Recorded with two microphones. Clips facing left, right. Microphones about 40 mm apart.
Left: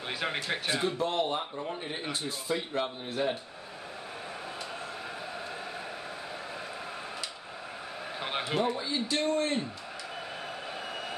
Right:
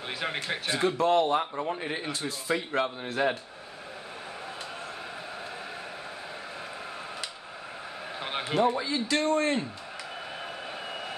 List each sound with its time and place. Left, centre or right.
0.1 s speech: centre
0.8 s speech: right
2.7 s a man's voice: right
8.2 s a sound: centre
8.7 s a man's voice: right
10.9 s a sound: centre